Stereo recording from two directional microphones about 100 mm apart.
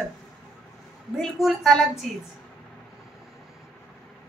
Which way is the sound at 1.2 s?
Centre (ahead or behind).